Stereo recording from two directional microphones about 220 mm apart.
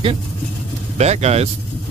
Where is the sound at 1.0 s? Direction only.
30° right (ahead or behind).